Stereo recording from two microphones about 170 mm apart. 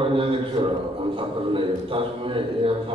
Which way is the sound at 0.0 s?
30° right (ahead or behind).